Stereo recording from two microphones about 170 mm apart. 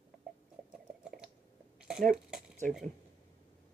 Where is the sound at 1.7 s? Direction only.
5° right (ahead or behind).